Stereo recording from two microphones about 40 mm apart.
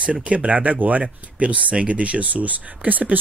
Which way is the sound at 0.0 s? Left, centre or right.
Right.